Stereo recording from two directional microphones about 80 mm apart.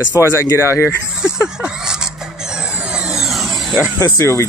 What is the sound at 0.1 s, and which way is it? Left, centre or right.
Speech, left.